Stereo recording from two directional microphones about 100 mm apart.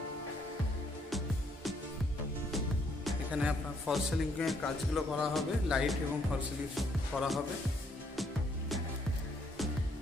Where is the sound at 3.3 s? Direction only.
10° right (ahead or behind).